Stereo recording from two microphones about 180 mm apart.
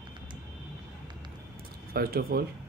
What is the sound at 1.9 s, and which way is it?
Speech, 55° right (ahead or behind).